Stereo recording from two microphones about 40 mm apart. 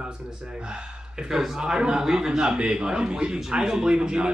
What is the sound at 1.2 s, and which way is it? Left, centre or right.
A man's voice, centre.